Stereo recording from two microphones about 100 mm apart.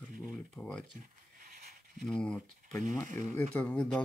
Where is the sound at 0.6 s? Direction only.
10° left (ahead or behind).